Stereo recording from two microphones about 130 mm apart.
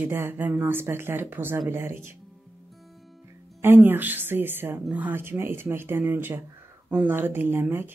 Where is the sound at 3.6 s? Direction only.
15° right (ahead or behind).